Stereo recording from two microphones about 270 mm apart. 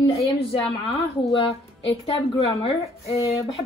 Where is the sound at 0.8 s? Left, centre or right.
Left.